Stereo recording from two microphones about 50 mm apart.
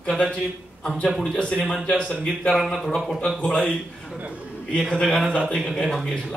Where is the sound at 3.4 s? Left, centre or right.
Centre.